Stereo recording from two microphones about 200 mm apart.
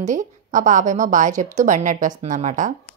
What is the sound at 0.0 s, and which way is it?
A woman's voice, 40° right (ahead or behind).